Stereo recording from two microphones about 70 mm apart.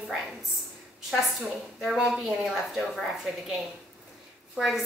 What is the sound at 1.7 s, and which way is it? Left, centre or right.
A woman's voice, centre.